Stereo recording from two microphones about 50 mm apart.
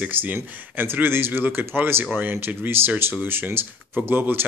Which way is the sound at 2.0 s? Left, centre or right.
Right.